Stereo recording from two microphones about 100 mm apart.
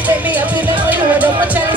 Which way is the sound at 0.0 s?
15° right (ahead or behind).